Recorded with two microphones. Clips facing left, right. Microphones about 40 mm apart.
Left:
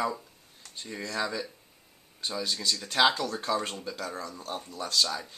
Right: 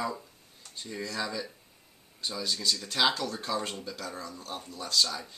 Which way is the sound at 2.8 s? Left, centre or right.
Left.